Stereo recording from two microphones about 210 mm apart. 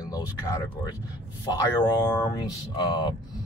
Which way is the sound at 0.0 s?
15° left (ahead or behind).